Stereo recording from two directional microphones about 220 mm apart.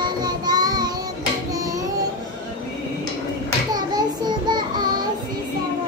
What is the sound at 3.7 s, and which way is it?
Child singing, 20° right (ahead or behind).